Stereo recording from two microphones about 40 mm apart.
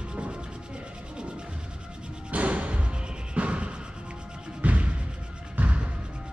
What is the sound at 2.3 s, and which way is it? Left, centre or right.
Music, right.